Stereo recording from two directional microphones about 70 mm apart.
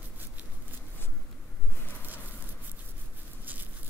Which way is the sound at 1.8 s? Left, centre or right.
Left.